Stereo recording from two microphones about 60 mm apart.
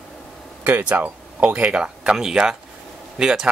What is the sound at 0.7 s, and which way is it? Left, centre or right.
Speech, right.